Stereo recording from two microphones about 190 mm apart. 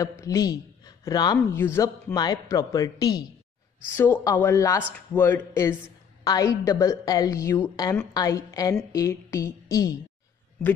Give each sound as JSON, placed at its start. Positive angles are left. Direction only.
{"t": 0.0, "sound": "a woman's voice", "side_deg": 15}